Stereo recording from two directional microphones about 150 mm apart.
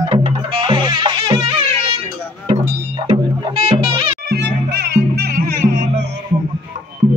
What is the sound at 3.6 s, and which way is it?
Music, 40° right (ahead or behind).